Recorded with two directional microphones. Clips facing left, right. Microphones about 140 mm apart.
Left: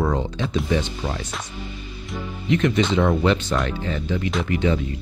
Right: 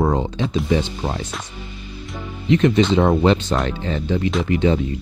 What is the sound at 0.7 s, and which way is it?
Speech, 30° right (ahead or behind).